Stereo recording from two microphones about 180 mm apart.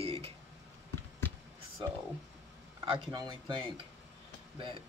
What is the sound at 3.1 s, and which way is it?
Speech, 25° right (ahead or behind).